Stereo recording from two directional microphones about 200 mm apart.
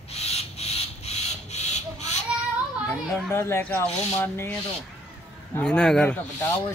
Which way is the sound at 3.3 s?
10° left (ahead or behind).